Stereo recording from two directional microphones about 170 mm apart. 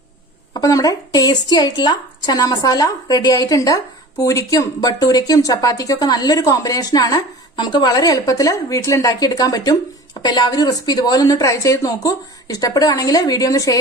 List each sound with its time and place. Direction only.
0.5 s a woman's voice: 20° left (ahead or behind)